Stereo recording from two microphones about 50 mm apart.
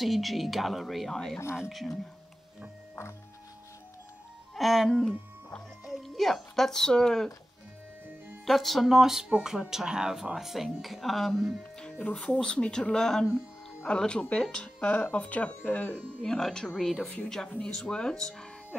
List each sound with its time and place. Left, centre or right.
0.0 s speech: centre
4.6 s speech: centre
4.8 s speech: centre
8.5 s speech: centre
11.8 s speech: left
16.3 s speech: centre